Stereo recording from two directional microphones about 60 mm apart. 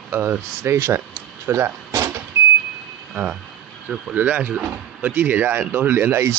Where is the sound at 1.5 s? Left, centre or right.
Right.